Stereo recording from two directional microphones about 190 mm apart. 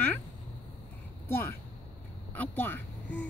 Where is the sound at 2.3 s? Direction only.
10° left (ahead or behind).